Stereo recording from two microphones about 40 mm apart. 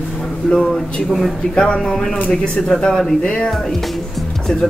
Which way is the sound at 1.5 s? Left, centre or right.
Centre.